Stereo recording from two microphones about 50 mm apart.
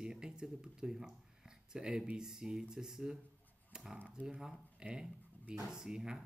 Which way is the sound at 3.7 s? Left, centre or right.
Centre.